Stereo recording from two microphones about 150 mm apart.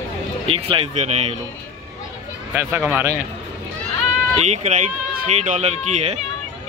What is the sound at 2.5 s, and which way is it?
Speech, 10° right (ahead or behind).